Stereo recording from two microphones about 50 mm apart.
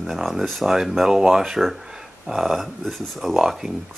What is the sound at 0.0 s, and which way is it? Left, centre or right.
Speech, centre.